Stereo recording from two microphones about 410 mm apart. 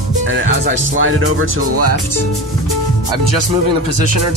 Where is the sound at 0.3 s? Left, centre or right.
Right.